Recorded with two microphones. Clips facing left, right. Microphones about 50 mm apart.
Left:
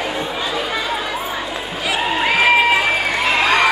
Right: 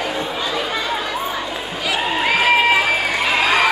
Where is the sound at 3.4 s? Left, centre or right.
Centre.